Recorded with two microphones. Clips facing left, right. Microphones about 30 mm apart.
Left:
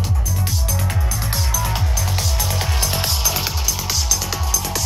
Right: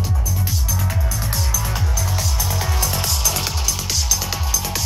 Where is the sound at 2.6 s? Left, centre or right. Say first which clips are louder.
Even; left.